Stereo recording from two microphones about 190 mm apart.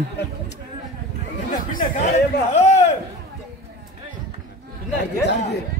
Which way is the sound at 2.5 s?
35° left (ahead or behind).